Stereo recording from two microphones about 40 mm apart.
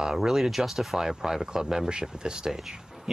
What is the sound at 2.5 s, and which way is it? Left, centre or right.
Speech, centre.